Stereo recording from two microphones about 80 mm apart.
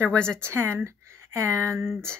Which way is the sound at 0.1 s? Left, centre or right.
Centre.